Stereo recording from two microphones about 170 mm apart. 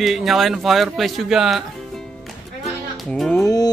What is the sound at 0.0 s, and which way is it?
Speech, centre (ahead or behind).